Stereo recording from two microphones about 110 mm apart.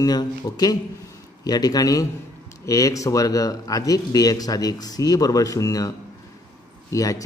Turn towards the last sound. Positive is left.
turn(degrees=30)  # may be behind; listen again after turning